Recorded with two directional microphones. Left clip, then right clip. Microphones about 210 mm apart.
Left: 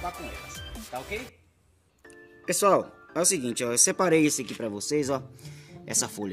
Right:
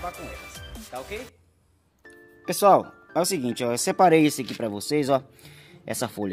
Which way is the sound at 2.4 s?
40° right (ahead or behind).